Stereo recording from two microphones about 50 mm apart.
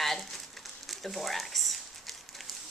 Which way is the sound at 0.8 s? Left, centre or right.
Centre.